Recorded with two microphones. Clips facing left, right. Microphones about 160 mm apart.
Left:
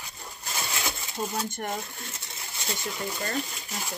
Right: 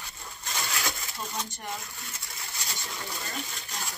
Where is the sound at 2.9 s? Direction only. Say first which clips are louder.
Left 7 dB; 10° left (ahead or behind).